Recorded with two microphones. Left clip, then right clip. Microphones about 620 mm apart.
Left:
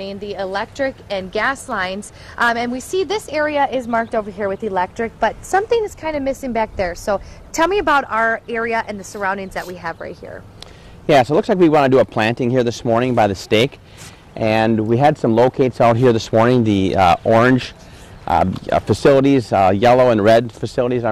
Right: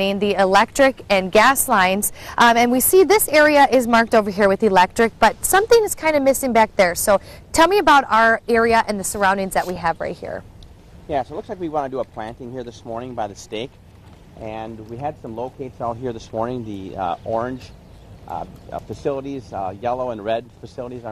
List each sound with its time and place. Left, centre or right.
0.0 s a woman's voice: right
11.1 s speech: left
14.4 s speech: left
18.3 s speech: left